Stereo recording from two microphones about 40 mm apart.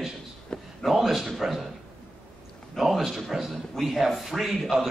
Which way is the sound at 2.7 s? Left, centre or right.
Centre.